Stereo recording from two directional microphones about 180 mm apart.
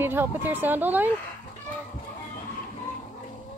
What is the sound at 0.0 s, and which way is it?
Speech, 10° right (ahead or behind).